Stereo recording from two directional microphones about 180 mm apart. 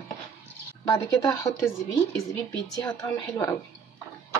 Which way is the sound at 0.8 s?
20° left (ahead or behind).